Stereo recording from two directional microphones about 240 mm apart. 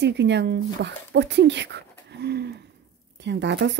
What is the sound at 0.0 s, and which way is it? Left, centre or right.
Speech, right.